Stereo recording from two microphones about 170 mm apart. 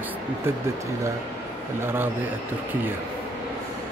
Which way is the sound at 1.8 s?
15° right (ahead or behind).